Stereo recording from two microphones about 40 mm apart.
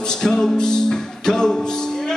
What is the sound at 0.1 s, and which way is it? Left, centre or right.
Music, centre.